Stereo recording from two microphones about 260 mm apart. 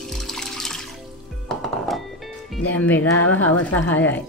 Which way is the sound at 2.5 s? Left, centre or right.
Centre.